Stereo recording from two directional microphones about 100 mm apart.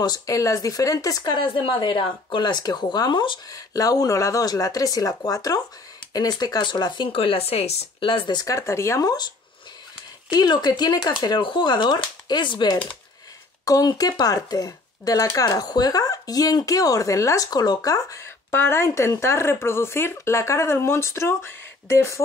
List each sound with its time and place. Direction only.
0.0 s speech: 40° left (ahead or behind)
1.3 s speech: 60° left (ahead or behind)
3.4 s speech: 35° left (ahead or behind); by 8.4 s 60° left (ahead or behind)
8.4 s speech: 30° left (ahead or behind)
10.3 s speech: 45° left (ahead or behind)
13.7 s speech: 35° left (ahead or behind)